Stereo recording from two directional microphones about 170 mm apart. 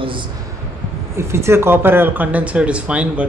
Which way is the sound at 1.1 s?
15° right (ahead or behind).